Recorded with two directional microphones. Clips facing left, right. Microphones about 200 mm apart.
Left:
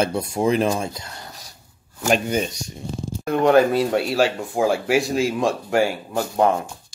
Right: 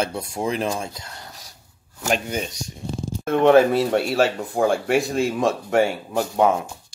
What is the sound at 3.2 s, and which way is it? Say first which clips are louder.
Speech: right 1 dB; centre (ahead or behind).